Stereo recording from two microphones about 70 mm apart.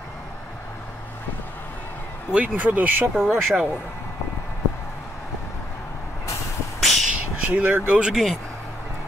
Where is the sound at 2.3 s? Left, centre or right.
Right.